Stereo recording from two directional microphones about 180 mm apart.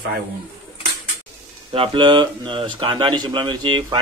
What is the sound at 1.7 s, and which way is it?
Speech, 30° right (ahead or behind).